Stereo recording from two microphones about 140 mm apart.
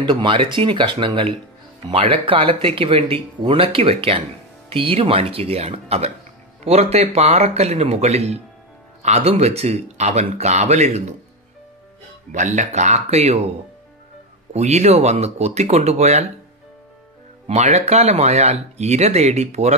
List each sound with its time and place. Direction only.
0.0 s speech: 35° right (ahead or behind); by 11.1 s 55° right (ahead or behind)
12.3 s speech: 60° right (ahead or behind)
14.5 s speech: 50° right (ahead or behind)
17.5 s speech: 55° right (ahead or behind)